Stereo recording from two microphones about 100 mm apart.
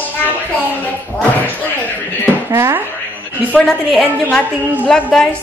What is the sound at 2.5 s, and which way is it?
Speech, 25° right (ahead or behind).